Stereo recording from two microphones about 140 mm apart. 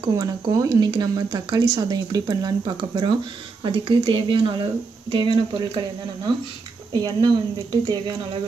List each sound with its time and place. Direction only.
0.0 s speech: 30° right (ahead or behind)
6.9 s speech: 30° right (ahead or behind)